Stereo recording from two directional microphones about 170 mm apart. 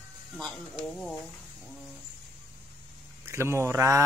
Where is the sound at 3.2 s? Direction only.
15° right (ahead or behind).